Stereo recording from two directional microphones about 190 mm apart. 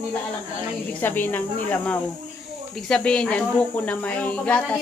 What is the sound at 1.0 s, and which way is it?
A woman's voice, 10° left (ahead or behind).